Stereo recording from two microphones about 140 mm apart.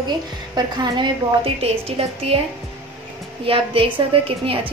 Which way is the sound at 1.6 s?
45° right (ahead or behind).